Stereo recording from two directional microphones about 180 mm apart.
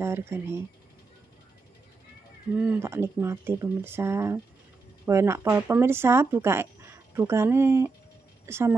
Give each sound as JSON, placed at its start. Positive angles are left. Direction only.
{"t": 0.0, "sound": "speech", "side_deg": -15}
{"t": 2.5, "sound": "speech", "side_deg": -10}